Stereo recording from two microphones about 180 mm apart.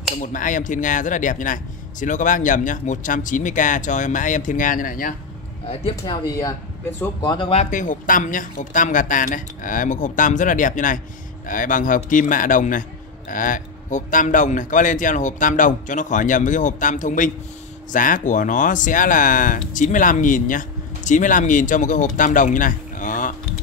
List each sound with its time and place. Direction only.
0.2 s speech: 45° left (ahead or behind)
5.7 s speech: 35° left (ahead or behind)
6.2 s speech: 20° left (ahead or behind)
7.5 s speech: 45° left (ahead or behind)